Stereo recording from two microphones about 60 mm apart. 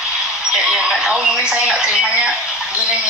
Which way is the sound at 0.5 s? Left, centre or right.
Centre.